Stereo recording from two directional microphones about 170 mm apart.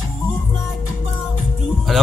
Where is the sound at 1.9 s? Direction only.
Centre (ahead or behind).